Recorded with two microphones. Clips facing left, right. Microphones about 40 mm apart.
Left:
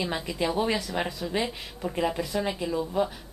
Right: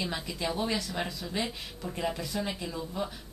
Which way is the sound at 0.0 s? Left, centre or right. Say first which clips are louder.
Left 5 dB; centre.